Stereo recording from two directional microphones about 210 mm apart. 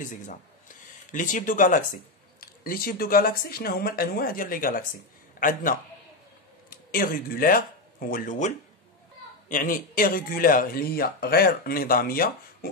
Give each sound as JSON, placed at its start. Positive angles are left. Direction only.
{"t": 1.1, "sound": "speech", "side_deg": 40}